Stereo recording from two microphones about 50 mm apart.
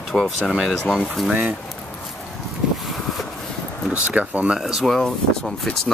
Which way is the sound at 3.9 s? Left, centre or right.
Right.